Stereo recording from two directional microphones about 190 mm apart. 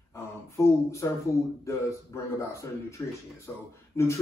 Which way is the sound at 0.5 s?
15° left (ahead or behind).